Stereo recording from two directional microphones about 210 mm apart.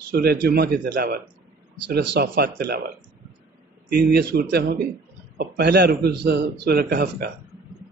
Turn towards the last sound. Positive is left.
turn(degrees=-50)  # may be behind; listen again after turning